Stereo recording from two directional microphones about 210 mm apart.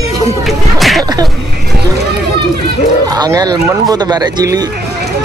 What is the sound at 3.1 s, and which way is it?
A man's voice, 15° right (ahead or behind).